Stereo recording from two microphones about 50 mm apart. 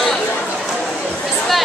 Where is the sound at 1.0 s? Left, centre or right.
Centre.